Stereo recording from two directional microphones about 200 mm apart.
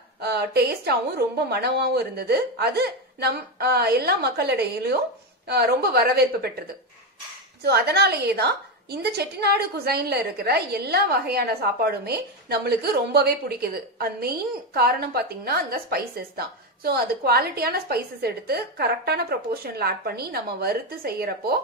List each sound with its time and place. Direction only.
0.2 s a woman's voice: 55° right (ahead or behind)
7.6 s a woman's voice: 55° right (ahead or behind)